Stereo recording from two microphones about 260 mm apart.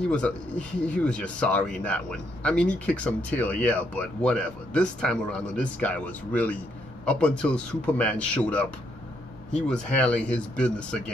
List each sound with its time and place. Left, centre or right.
0.1 s speech: centre